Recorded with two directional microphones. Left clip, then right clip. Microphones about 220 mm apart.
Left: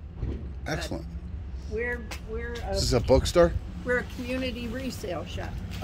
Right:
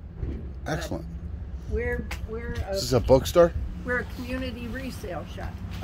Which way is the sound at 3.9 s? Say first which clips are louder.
Left 1 dB; 15° left (ahead or behind).